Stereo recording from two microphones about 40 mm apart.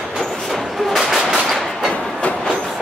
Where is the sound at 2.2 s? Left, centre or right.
Left.